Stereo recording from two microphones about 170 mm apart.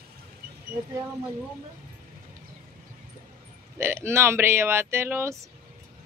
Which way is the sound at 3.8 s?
15° right (ahead or behind).